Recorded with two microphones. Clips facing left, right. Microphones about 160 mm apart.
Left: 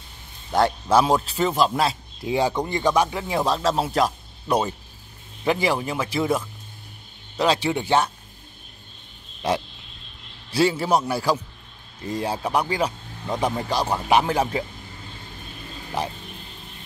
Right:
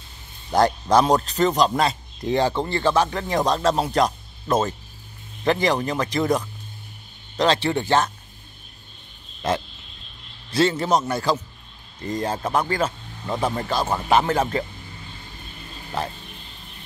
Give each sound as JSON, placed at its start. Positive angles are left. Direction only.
{"t": 0.5, "sound": "a man's voice", "side_deg": 0}
{"t": 9.4, "sound": "speech", "side_deg": 10}
{"t": 16.0, "sound": "speech", "side_deg": 15}